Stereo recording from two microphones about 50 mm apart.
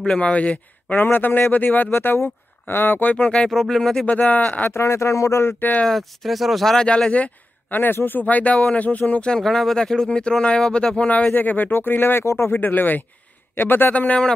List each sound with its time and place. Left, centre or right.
0.0 s speech: left
0.9 s speech: left
3.2 s speech: left
3.4 s speech: centre
4.0 s speech: left
4.6 s speech: left
5.9 s speech: centre
7.1 s speech: left
7.8 s speech: left
9.4 s speech: centre
11.1 s speech: left
12.2 s speech: left
12.4 s speech: left